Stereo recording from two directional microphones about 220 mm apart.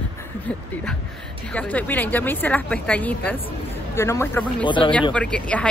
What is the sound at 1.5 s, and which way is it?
A woman's voice, 5° left (ahead or behind).